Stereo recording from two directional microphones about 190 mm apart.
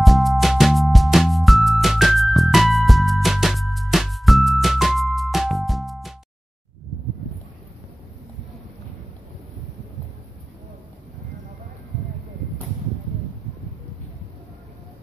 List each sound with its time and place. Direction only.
0.0 s music: centre (ahead or behind)